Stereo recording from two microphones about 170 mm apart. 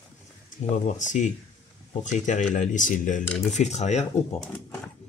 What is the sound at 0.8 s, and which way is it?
Speech, 45° left (ahead or behind).